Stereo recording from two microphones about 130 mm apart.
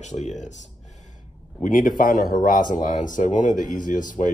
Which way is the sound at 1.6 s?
90° left.